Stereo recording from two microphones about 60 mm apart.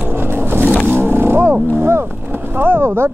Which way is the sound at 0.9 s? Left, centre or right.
Right.